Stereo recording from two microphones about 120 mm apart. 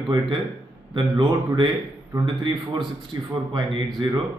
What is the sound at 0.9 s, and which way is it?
A man's voice, 40° right (ahead or behind).